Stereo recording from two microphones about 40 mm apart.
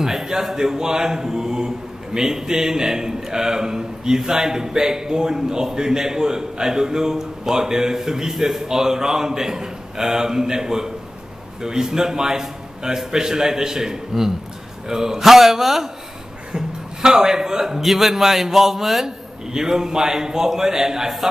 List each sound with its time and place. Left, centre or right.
0.0 s a man's voice: centre